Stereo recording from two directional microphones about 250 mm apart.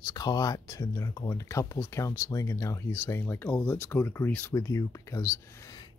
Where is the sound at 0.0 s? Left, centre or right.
Centre.